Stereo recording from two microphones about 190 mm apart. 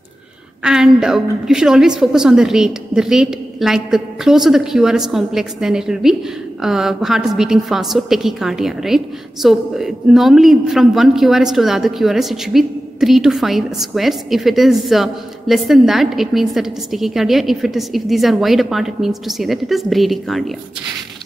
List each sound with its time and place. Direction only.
0.7 s a woman's voice: 5° right (ahead or behind)